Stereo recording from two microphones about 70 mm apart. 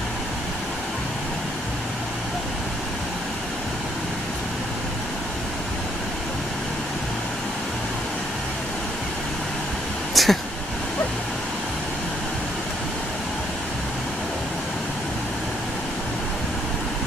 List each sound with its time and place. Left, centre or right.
10.1 s vehicle: centre